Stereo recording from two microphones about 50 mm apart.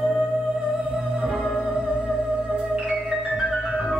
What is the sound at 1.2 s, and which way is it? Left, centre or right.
Music, centre.